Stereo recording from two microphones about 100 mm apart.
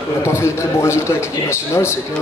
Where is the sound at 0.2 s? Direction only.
30° left (ahead or behind).